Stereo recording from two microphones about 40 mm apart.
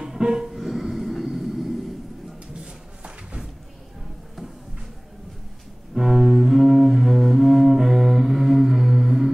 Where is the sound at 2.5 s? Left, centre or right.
Right.